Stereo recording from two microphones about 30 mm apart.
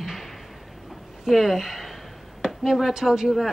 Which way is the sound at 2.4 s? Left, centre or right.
Right.